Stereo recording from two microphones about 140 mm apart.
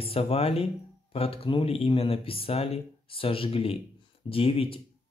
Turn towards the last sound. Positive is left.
turn(degrees=40)  # may be behind; listen again after turning